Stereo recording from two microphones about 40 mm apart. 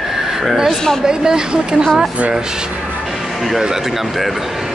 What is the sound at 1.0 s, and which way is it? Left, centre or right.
Speech, centre.